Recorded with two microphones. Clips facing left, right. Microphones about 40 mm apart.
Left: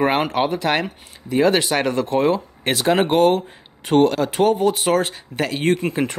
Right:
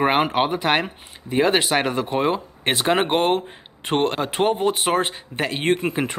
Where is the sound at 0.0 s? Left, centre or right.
Centre.